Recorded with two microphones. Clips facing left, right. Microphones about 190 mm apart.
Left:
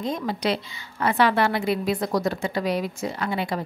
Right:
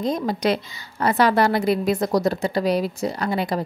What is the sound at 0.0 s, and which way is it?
A woman's voice, 40° right (ahead or behind).